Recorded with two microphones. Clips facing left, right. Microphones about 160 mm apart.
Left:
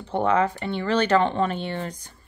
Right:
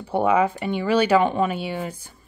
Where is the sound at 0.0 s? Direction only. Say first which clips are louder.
Right 2 dB; 10° right (ahead or behind).